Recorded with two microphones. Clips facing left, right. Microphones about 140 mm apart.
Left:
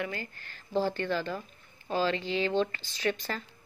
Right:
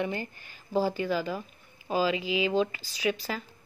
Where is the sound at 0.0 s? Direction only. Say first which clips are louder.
Right 4 dB; 20° right (ahead or behind).